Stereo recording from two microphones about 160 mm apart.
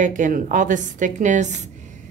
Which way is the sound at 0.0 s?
55° right (ahead or behind).